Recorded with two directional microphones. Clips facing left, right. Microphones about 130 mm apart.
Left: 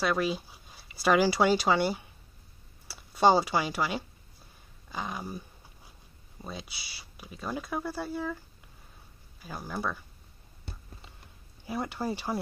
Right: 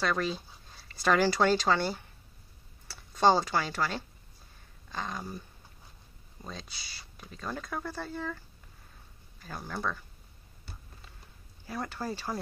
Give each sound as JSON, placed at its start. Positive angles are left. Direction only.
{"t": 0.0, "sound": "speech", "side_deg": 10}
{"t": 6.4, "sound": "speech", "side_deg": 10}
{"t": 9.4, "sound": "speech", "side_deg": 10}
{"t": 11.6, "sound": "speech", "side_deg": 15}